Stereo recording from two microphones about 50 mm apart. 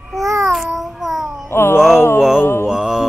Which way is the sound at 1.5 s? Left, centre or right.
Left.